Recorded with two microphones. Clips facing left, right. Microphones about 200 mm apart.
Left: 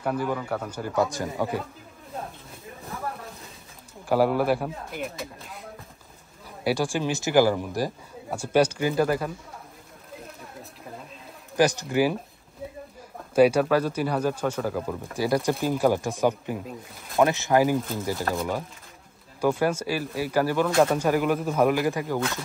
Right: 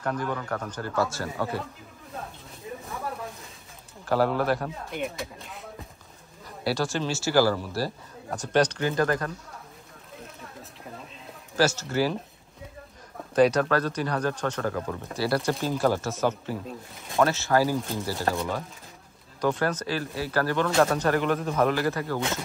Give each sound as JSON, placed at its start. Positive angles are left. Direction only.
{"t": 0.0, "sound": "speech", "side_deg": 10}
{"t": 4.0, "sound": "speech", "side_deg": 10}
{"t": 6.6, "sound": "speech", "side_deg": 15}
{"t": 11.5, "sound": "speech", "side_deg": 15}
{"t": 13.3, "sound": "speech", "side_deg": 10}
{"t": 18.3, "sound": "speech", "side_deg": 0}